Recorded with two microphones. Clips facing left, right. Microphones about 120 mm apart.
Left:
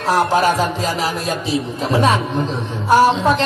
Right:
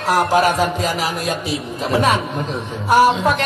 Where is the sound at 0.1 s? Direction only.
30° left (ahead or behind).